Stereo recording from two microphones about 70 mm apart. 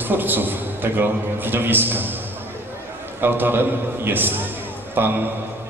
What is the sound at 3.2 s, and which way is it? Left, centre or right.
A man's voice, right.